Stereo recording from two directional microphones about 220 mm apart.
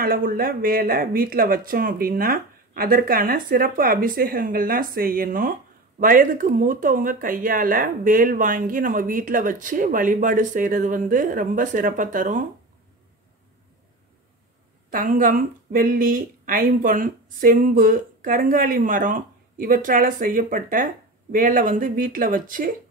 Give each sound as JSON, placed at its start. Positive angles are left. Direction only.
{"t": 0.0, "sound": "a woman's voice", "side_deg": -40}
{"t": 14.9, "sound": "a woman's voice", "side_deg": -40}